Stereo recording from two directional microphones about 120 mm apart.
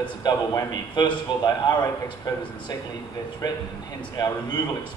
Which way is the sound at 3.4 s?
35° left (ahead or behind).